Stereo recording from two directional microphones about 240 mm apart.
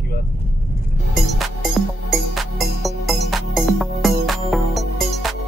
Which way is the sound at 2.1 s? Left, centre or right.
Centre.